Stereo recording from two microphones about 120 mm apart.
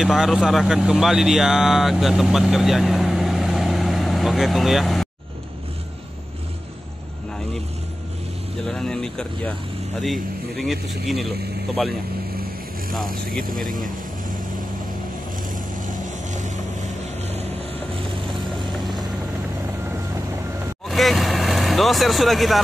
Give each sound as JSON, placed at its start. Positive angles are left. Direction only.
{"t": 0.0, "sound": "speech", "side_deg": -5}
{"t": 8.6, "sound": "speech", "side_deg": 5}
{"t": 12.9, "sound": "speech", "side_deg": 0}
{"t": 15.5, "sound": "vehicle", "side_deg": -90}
{"t": 20.9, "sound": "vehicle", "side_deg": 0}